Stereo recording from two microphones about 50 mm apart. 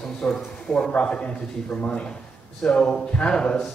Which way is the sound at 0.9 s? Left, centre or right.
Left.